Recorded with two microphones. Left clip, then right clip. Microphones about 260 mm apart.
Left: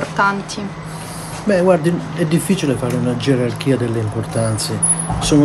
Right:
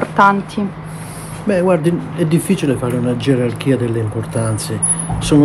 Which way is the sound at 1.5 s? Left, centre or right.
Centre.